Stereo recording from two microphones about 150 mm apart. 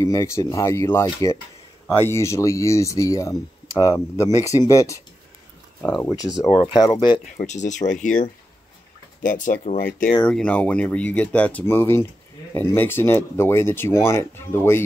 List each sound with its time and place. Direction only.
0.0 s speech: 20° left (ahead or behind)
6.1 s speech: 25° left (ahead or behind)
7.3 s speech: 55° left (ahead or behind)
10.2 s speech: 10° left (ahead or behind)